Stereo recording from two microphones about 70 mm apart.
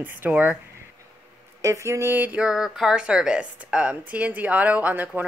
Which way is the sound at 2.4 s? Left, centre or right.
Centre.